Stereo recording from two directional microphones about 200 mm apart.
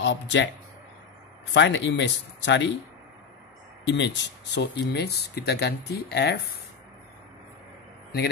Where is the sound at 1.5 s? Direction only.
65° left (ahead or behind).